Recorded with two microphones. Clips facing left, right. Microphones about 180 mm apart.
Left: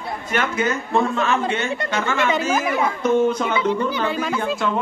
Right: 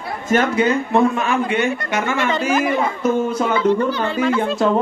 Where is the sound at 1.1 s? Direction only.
15° right (ahead or behind).